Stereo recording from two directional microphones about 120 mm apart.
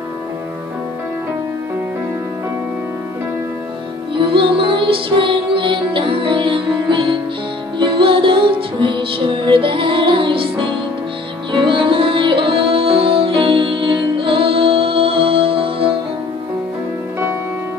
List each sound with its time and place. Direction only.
4.1 s music: 45° right (ahead or behind)